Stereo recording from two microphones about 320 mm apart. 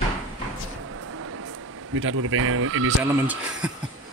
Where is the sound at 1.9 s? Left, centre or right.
Right.